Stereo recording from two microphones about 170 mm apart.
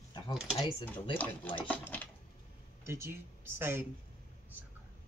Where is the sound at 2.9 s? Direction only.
15° right (ahead or behind).